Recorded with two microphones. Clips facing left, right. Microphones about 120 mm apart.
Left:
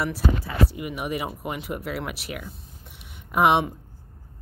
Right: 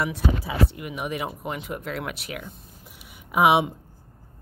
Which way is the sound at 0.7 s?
Centre (ahead or behind).